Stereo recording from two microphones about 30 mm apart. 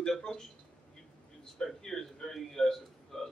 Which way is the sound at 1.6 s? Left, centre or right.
Centre.